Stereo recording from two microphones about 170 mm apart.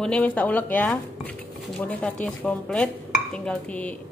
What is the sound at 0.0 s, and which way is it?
Speech, 5° left (ahead or behind).